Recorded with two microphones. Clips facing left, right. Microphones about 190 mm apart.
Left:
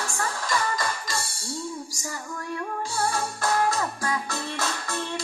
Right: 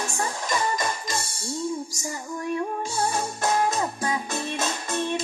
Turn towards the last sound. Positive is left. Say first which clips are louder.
# right 4 dB
turn(degrees=-20)  # may be behind; listen again after turning